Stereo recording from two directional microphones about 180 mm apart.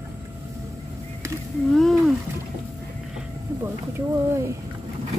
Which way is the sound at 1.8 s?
Centre (ahead or behind).